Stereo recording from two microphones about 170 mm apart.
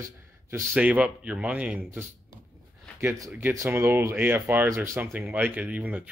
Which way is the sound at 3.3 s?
10° right (ahead or behind).